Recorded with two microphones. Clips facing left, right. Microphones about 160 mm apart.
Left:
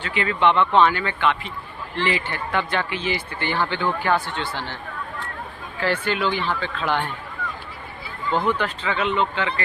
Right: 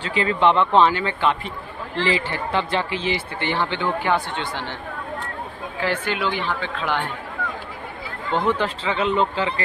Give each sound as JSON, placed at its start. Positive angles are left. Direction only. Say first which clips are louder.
{"t": 0.0, "sound": "speech", "louder": "right 2 dB", "side_deg": -30}
{"t": 5.8, "sound": "speech", "louder": "left 1 dB", "side_deg": -10}
{"t": 8.4, "sound": "speech", "louder": "right 2 dB", "side_deg": -30}